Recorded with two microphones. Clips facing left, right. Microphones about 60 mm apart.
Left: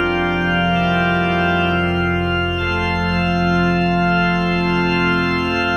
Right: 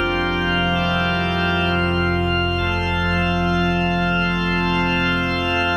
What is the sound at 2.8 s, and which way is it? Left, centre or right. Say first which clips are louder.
Organ: left 2 dB; left.